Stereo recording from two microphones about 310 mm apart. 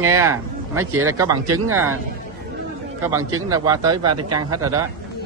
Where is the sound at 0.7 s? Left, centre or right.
Right.